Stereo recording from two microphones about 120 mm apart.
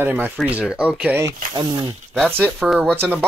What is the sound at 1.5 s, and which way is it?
Speech, 35° right (ahead or behind).